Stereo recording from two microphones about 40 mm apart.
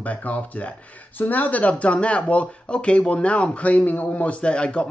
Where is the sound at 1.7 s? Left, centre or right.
Left.